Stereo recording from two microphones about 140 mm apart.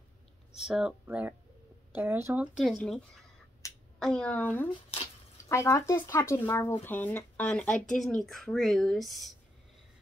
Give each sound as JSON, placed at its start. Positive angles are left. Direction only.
{"t": 0.6, "sound": "speech", "side_deg": -5}
{"t": 1.0, "sound": "speech", "side_deg": -15}
{"t": 2.6, "sound": "speech", "side_deg": 0}
{"t": 3.6, "sound": "finger snapping", "side_deg": 20}
{"t": 4.0, "sound": "speech", "side_deg": 5}